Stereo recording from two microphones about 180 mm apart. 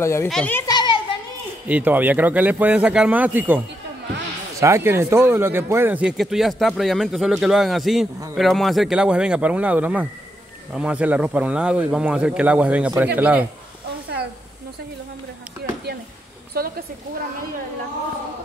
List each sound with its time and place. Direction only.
0.0 s a child's voice: 15° left (ahead or behind)
0.7 s children playing: 25° left (ahead or behind)
1.7 s speech: 10° right (ahead or behind)
16.5 s a sound: 55° right (ahead or behind)